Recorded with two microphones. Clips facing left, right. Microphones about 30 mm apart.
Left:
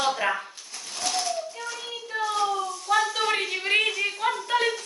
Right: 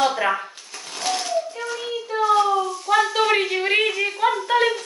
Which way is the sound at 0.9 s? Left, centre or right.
Right.